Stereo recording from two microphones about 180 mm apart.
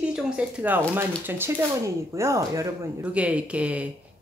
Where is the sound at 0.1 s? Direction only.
10° right (ahead or behind).